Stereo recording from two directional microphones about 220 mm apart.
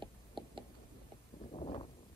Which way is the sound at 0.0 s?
20° right (ahead or behind).